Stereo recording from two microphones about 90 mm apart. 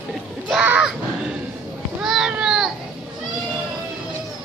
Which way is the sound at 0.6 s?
15° right (ahead or behind).